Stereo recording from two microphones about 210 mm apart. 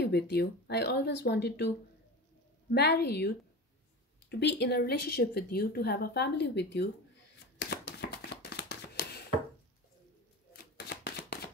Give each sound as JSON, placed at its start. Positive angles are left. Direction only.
{"t": 0.0, "sound": "speech", "side_deg": 50}
{"t": 2.7, "sound": "speech", "side_deg": 50}
{"t": 7.5, "sound": "a sound", "side_deg": 55}
{"t": 10.5, "sound": "shuffling cards", "side_deg": 50}